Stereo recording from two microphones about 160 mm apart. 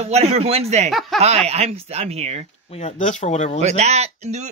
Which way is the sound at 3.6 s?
45° right (ahead or behind).